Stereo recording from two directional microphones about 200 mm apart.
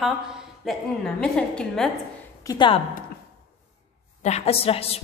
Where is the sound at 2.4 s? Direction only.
25° left (ahead or behind).